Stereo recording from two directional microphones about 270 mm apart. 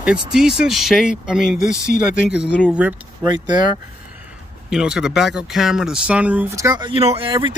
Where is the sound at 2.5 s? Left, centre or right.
Centre.